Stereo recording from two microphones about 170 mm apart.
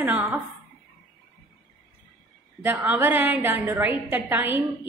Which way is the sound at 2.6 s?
10° right (ahead or behind).